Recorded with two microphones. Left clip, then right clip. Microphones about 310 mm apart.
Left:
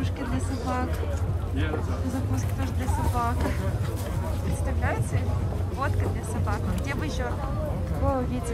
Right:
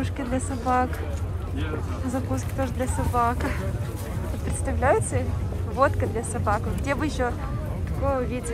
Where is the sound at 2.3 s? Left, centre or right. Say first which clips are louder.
Right 5 dB; centre.